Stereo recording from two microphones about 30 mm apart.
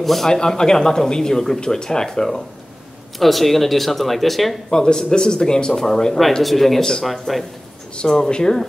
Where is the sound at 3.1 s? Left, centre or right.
Centre.